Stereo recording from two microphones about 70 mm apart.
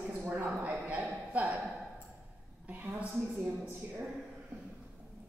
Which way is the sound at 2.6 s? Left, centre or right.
Right.